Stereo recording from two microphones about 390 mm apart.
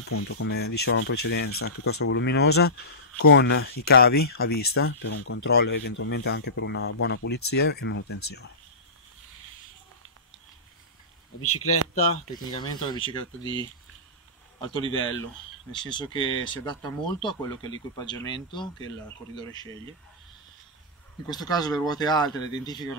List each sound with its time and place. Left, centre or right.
0.1 s speech: left
11.4 s speech: left
12.4 s speech: centre
13.4 s speech: centre
14.6 s speech: centre
21.3 s speech: centre